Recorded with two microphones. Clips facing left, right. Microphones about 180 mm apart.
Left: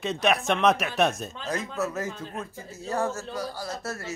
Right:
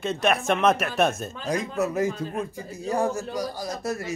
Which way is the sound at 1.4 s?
15° right (ahead or behind).